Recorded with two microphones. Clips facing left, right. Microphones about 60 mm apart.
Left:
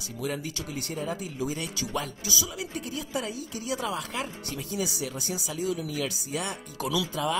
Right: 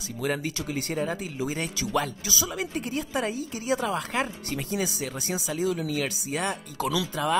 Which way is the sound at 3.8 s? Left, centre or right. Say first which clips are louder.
Right 4 dB; right.